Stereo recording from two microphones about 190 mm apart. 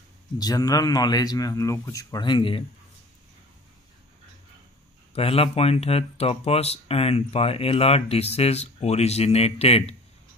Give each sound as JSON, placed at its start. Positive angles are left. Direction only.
{"t": 0.4, "sound": "speech", "side_deg": 20}
{"t": 5.1, "sound": "speech", "side_deg": 30}